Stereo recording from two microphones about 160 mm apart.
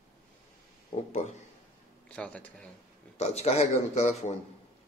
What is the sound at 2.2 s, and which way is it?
Speech, 10° left (ahead or behind).